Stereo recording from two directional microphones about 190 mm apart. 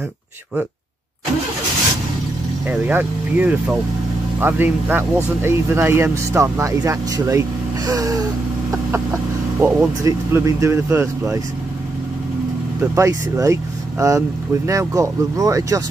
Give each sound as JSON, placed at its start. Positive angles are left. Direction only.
{"t": 2.7, "sound": "speech", "side_deg": -10}
{"t": 12.9, "sound": "speech", "side_deg": -15}